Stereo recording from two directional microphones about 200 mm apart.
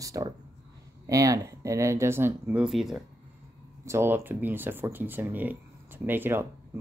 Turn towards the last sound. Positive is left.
turn(degrees=-10)  # may be behind; listen again after turning